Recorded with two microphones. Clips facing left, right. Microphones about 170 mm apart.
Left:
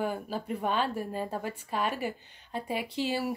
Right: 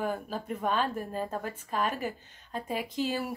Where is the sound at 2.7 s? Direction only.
45° right (ahead or behind).